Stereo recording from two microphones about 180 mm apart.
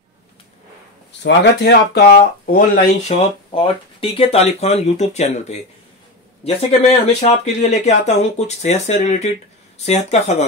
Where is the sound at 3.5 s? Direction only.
30° left (ahead or behind).